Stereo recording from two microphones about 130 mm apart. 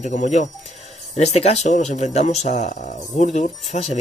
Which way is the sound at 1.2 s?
55° left (ahead or behind).